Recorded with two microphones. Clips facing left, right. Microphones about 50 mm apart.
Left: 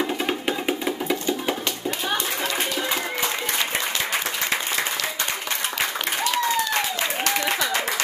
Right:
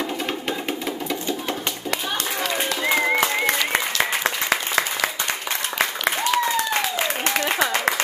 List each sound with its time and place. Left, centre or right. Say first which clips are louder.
0.0 s music: left 2 dB; centre
3.7 s applause: right 3 dB; right
6.3 s applause: left 1 dB; centre
7.2 s a sound: right 2 dB; right